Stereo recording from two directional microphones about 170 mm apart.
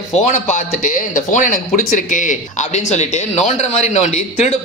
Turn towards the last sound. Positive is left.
turn(degrees=40)  # may be behind; listen again after turning